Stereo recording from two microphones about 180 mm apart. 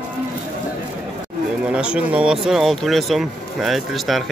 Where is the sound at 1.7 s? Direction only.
5° right (ahead or behind).